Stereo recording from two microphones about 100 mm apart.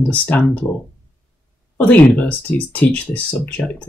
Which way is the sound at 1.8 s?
15° left (ahead or behind).